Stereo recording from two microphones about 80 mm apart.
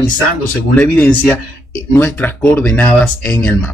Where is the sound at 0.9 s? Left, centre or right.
Left.